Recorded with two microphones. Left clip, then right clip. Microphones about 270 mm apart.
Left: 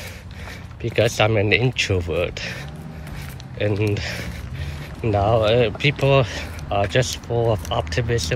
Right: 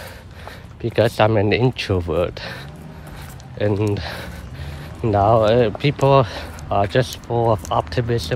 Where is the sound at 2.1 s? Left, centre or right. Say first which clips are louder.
Right 2 dB; centre.